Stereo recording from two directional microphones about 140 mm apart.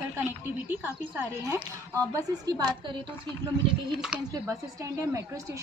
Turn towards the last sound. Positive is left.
turn(degrees=-5)  # may be behind; listen again after turning